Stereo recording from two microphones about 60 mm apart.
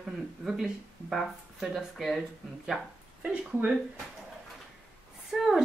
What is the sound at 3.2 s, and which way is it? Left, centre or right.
Speech, right.